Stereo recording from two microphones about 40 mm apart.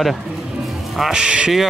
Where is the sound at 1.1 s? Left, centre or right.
Right.